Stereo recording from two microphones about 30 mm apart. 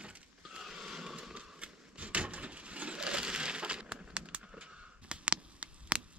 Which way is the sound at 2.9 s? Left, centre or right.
Right.